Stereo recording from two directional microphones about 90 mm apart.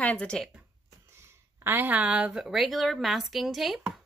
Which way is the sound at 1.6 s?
25° right (ahead or behind).